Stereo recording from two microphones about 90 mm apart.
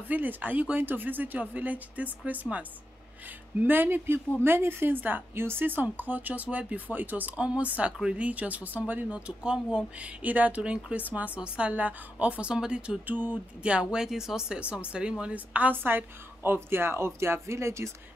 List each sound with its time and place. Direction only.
0.1 s speech: 20° right (ahead or behind)